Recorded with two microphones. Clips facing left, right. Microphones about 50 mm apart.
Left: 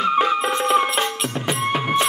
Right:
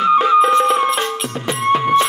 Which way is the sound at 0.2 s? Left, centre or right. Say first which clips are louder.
Right 7 dB; centre.